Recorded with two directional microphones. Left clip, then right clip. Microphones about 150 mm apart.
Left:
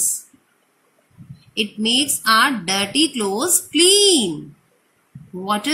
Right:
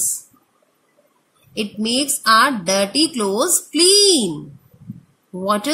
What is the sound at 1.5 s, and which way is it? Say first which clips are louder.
A woman's voice: left 2 dB; 65° right (ahead or behind).